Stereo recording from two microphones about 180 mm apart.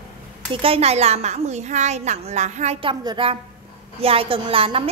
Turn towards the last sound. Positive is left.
turn(degrees=-30)  # may be behind; listen again after turning